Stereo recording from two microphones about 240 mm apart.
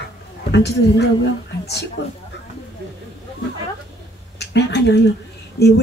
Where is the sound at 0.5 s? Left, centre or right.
Left.